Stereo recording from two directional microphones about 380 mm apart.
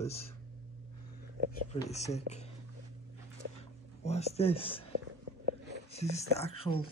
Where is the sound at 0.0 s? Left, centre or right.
Centre.